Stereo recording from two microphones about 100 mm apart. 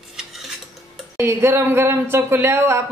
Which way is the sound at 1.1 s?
25° right (ahead or behind).